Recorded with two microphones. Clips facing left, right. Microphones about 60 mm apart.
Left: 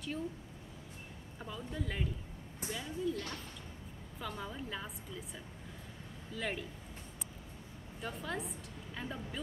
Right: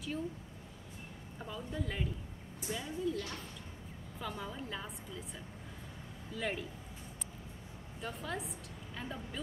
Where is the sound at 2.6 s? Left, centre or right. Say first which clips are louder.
Right 1 dB; left.